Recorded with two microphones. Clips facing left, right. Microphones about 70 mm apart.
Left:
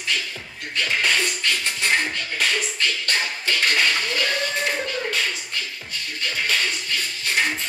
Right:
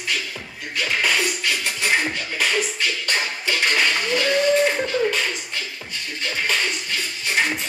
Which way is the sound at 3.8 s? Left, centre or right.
Centre.